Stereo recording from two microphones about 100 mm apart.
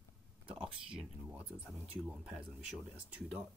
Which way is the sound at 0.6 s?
10° right (ahead or behind).